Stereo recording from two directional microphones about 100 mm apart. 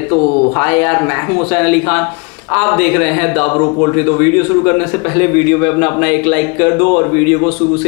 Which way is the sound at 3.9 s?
15° left (ahead or behind).